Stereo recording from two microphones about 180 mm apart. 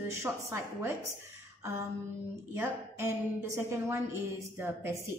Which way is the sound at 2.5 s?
15° right (ahead or behind).